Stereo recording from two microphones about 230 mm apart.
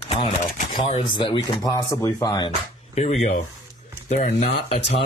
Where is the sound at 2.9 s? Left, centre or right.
Left.